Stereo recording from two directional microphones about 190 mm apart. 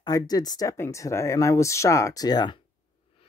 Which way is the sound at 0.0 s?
20° left (ahead or behind).